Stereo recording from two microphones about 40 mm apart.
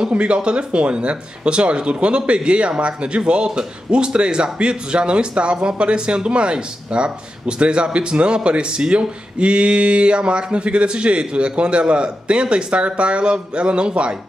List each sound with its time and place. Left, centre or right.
0.0 s speech: right